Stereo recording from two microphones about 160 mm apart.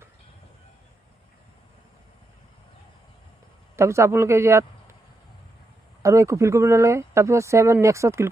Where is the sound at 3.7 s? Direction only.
15° right (ahead or behind).